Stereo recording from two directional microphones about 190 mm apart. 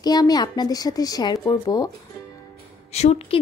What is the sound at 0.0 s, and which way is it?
Speech, 20° left (ahead or behind).